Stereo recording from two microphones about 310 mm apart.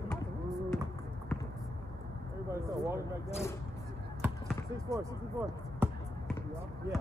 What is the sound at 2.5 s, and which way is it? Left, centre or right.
Vehicle, centre.